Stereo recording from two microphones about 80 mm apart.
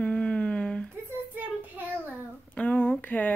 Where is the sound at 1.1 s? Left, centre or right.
Right.